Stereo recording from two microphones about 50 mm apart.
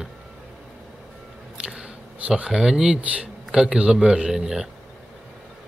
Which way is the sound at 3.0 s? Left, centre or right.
Right.